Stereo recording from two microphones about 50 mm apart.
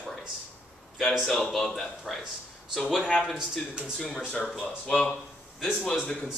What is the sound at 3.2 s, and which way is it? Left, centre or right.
Speech, centre.